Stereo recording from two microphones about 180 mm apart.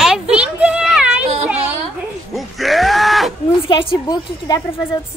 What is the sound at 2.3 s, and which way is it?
Groan, centre (ahead or behind).